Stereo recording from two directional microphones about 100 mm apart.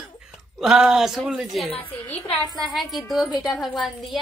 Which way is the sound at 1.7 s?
15° left (ahead or behind).